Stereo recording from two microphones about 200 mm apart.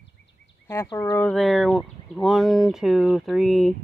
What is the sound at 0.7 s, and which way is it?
Speech, 15° left (ahead or behind).